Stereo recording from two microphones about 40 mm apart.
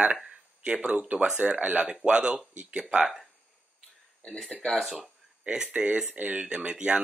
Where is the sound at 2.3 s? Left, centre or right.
Right.